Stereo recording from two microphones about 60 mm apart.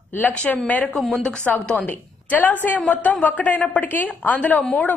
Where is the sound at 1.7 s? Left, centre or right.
Left.